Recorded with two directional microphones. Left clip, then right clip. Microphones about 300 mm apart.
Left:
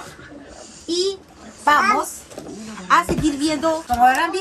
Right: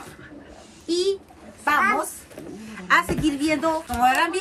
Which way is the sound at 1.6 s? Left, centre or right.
Centre.